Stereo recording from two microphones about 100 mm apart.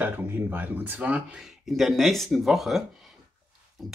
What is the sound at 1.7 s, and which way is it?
Speech, centre (ahead or behind).